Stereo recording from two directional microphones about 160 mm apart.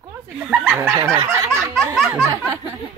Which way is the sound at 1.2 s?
15° right (ahead or behind).